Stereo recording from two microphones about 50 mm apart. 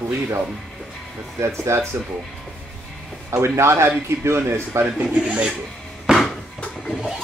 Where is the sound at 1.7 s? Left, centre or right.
Right.